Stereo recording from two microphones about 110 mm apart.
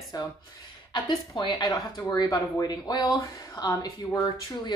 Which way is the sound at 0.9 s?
45° left (ahead or behind).